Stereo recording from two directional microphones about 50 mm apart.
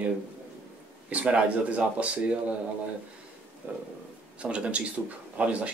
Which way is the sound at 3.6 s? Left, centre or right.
Right.